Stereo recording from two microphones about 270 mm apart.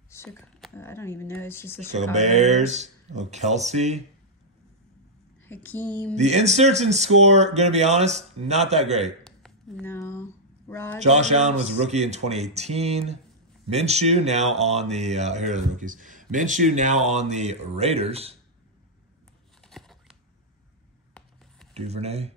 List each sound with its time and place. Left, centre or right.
0.1 s speech: centre
2.1 s speech: right
5.4 s speech: centre
6.1 s speech: right
9.2 s a sound: centre
11.0 s speech: right
19.7 s scissors: centre
21.7 s speech: right